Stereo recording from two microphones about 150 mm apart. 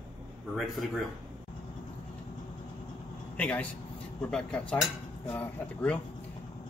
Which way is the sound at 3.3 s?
10° left (ahead or behind).